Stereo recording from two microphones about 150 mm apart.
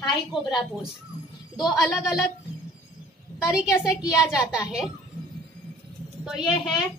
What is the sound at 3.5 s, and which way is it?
Speech, 5° right (ahead or behind).